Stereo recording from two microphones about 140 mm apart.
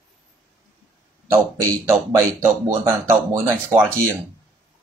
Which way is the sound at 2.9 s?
20° right (ahead or behind).